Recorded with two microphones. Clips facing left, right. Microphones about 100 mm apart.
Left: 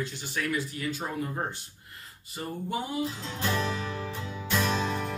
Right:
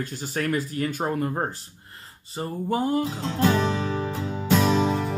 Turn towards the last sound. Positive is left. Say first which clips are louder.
# right 7 dB
turn(degrees=-90)